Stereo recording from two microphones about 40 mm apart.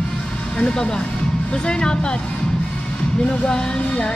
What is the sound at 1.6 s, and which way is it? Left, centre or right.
Music, left.